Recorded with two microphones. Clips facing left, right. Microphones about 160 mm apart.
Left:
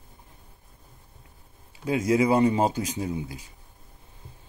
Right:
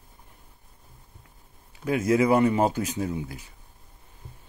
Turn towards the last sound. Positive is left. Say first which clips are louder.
# right 1 dB
turn(degrees=20)  # may be behind; listen again after turning